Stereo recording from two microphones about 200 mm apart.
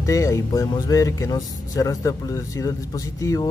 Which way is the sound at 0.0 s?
15° left (ahead or behind).